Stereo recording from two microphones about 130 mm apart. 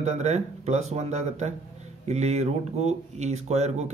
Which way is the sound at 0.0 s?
55° right (ahead or behind).